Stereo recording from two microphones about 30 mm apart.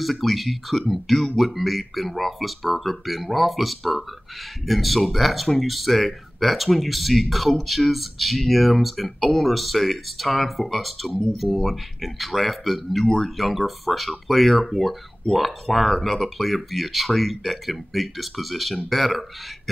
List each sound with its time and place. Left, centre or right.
0.0 s speech: centre
13.0 s speech: centre
13.4 s speech: centre